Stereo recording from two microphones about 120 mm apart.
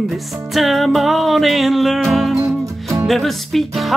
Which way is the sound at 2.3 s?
25° right (ahead or behind).